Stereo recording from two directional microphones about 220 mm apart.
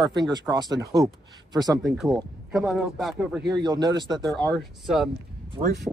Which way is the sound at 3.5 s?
20° right (ahead or behind).